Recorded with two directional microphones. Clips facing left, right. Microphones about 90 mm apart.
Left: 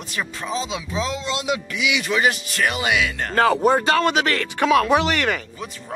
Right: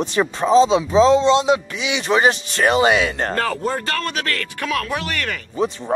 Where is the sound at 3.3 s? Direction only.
10° left (ahead or behind).